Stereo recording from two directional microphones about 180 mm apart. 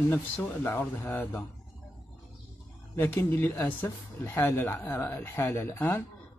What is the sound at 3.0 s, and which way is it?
Speech, 15° left (ahead or behind).